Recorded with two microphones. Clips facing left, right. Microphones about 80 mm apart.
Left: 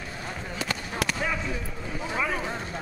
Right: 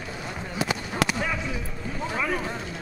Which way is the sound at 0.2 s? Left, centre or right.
Centre.